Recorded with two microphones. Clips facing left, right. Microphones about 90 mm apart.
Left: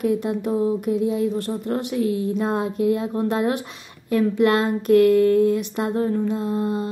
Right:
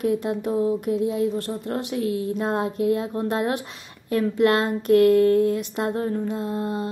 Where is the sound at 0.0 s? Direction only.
25° right (ahead or behind).